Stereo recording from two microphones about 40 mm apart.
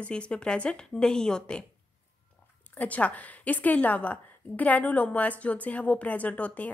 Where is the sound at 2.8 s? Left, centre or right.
Left.